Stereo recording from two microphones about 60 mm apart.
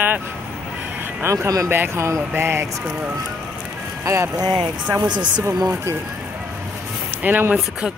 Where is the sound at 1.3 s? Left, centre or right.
Right.